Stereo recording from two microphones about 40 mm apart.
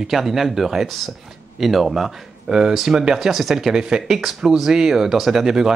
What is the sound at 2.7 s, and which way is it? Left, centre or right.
Speech, centre.